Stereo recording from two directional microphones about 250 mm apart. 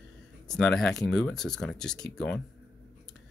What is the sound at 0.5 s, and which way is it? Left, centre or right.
Speech, centre.